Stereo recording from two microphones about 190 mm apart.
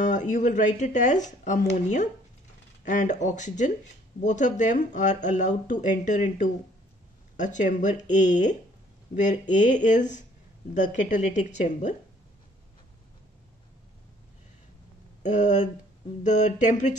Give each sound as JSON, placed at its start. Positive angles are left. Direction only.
{"t": 0.0, "sound": "speech", "side_deg": 40}
{"t": 15.2, "sound": "speech", "side_deg": 40}